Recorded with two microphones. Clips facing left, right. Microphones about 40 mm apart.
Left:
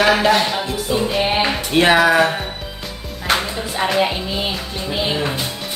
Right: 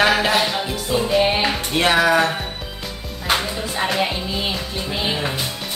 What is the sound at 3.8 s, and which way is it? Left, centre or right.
Music, centre.